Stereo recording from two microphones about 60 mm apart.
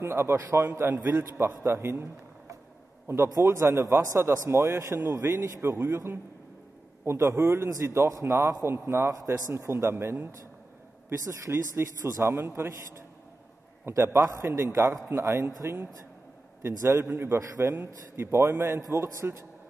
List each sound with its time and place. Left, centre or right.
0.0 s a man's voice: right
7.1 s a man's voice: right
8.6 s a man's voice: right
11.1 s a man's voice: right
13.8 s a man's voice: right